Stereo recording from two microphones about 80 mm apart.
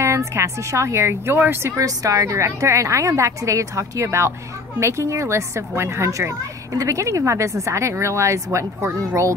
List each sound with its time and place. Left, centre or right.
0.0 s speech: right
1.8 s speech: right